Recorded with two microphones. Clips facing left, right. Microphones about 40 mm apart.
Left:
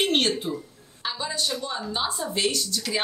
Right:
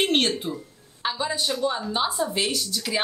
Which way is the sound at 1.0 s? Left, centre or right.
Centre.